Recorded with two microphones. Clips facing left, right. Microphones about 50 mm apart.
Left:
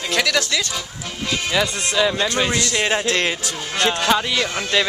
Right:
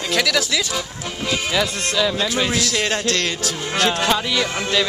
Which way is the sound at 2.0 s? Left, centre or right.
Centre.